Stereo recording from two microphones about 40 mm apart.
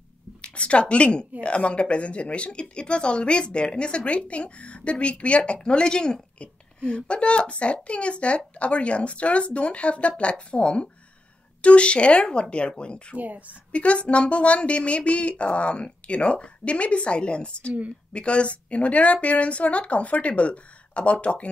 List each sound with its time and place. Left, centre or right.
0.4 s a woman's voice: left
13.1 s speech: right
13.7 s speech: left